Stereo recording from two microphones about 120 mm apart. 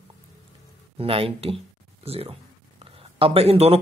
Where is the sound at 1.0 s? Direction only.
50° right (ahead or behind).